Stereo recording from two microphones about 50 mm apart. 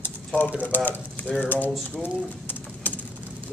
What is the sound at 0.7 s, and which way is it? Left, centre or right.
Speech, left.